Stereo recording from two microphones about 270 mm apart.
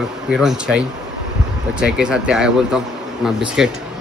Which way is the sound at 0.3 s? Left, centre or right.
Centre.